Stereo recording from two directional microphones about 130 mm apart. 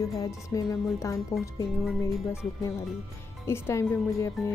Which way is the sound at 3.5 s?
20° left (ahead or behind).